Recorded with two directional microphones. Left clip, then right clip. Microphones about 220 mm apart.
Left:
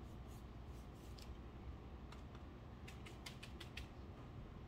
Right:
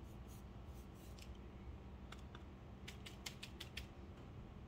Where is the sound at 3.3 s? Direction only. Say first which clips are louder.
Right 4 dB; 10° right (ahead or behind).